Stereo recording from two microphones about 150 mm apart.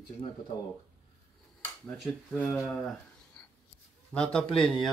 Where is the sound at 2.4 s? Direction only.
15° left (ahead or behind).